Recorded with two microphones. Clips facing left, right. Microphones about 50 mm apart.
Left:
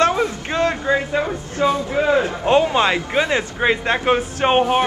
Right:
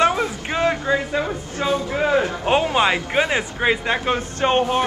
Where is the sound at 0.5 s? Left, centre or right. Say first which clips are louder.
Right 1 dB; centre.